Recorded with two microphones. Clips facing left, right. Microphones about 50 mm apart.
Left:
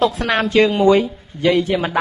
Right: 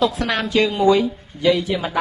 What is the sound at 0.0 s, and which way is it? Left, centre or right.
A man's voice, left.